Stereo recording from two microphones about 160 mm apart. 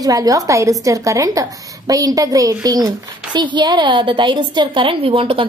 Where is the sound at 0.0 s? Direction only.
20° right (ahead or behind).